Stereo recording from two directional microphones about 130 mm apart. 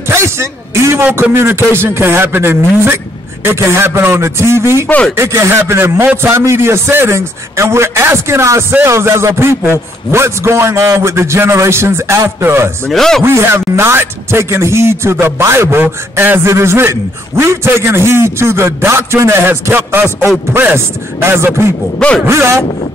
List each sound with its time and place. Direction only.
0.1 s a man's voice: 20° right (ahead or behind)
4.8 s speech: 10° left (ahead or behind)
5.1 s a man's voice: 20° right (ahead or behind)
12.8 s a man's voice: 5° left (ahead or behind)
13.2 s a man's voice: 20° right (ahead or behind)